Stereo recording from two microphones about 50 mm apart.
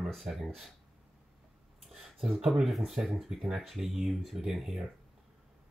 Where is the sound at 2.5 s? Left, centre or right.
Centre.